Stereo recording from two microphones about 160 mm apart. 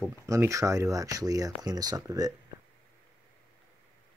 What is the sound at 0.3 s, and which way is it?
Speech, 20° right (ahead or behind).